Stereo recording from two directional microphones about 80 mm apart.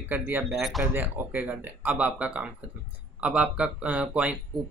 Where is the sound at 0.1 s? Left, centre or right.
Right.